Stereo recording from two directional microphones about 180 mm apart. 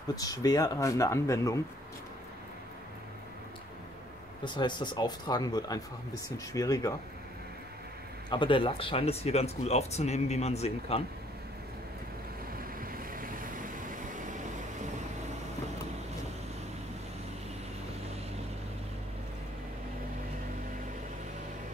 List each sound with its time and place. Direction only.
0.1 s speech: 20° left (ahead or behind)
4.5 s speech: 25° left (ahead or behind)
8.3 s speech: 30° left (ahead or behind)
12.5 s vehicle: 55° right (ahead or behind)